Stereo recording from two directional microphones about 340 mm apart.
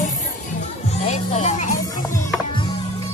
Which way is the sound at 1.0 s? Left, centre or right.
Centre.